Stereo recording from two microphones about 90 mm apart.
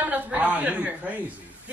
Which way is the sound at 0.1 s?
15° right (ahead or behind).